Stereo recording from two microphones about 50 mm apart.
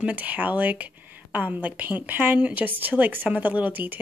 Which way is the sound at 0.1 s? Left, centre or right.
Right.